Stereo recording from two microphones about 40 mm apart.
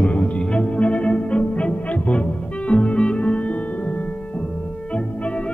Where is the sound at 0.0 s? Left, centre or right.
Left.